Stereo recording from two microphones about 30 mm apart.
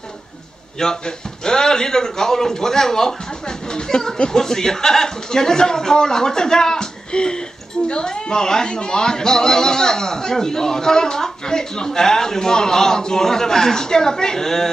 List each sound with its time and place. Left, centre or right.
0.7 s speech: left
3.4 s speech: left